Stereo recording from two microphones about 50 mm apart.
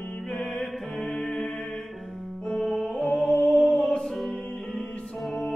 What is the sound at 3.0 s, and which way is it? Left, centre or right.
Music, left.